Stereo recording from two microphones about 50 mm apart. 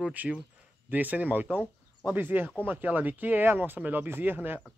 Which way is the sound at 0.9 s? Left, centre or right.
Right.